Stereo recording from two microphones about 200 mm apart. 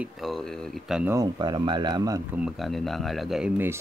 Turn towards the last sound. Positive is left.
turn(degrees=-10)  # may be behind; listen again after turning